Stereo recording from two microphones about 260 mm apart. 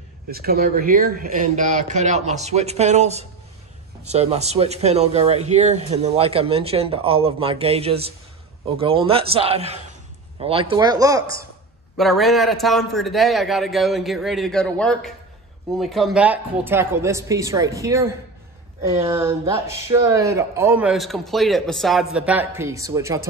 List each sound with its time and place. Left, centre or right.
0.3 s speech: right; by 11.2 s centre
12.0 s a man's voice: centre